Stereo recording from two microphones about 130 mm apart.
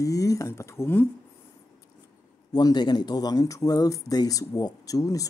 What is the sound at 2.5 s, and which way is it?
Speech, 35° left (ahead or behind).